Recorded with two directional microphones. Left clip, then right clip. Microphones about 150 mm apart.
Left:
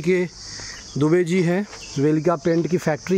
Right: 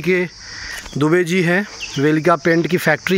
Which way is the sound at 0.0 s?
5° left (ahead or behind).